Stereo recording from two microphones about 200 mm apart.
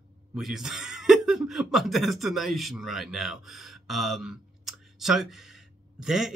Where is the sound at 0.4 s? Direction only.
Centre (ahead or behind).